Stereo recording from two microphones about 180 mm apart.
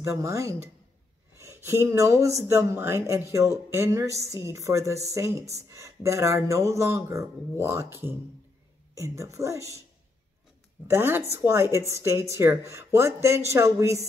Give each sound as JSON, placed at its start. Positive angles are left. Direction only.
{"t": 0.0, "sound": "speech", "side_deg": -15}
{"t": 10.9, "sound": "speech", "side_deg": -15}